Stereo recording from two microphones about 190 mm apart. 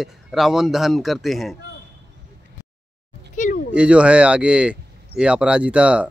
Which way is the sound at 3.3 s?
40° left (ahead or behind).